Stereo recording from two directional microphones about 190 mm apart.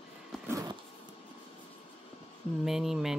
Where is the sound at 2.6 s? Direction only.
Centre (ahead or behind).